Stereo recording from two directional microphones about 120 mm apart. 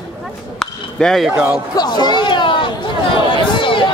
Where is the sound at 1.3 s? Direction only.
15° right (ahead or behind).